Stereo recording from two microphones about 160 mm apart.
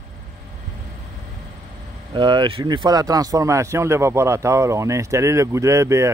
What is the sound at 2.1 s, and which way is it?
Speech, 30° right (ahead or behind).